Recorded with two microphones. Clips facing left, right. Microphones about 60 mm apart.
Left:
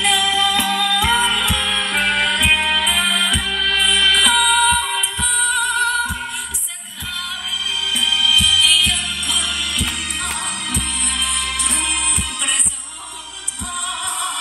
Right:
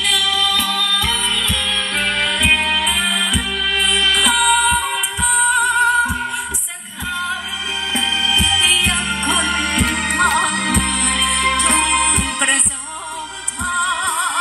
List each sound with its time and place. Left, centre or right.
0.0 s music: left; by 5.0 s centre
5.2 s music: centre
7.9 s music: right
13.7 s music: right